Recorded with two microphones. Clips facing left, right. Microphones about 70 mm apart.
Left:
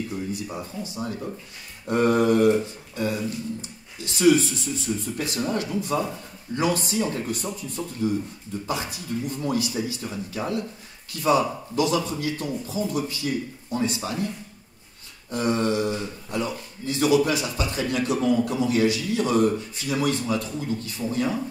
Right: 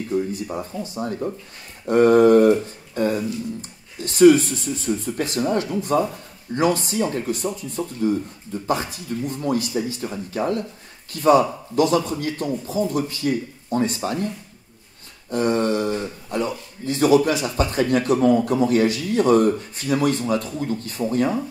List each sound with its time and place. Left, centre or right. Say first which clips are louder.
0.3 s a man's voice: right 4 dB; right
15.3 s a man's voice: right 3 dB; right